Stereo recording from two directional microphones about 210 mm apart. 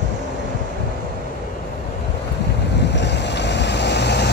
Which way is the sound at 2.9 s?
55° left (ahead or behind).